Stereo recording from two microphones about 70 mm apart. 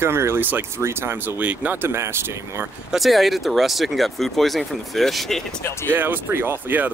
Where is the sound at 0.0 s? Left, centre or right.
Right.